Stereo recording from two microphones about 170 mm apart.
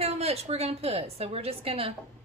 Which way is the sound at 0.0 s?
35° right (ahead or behind).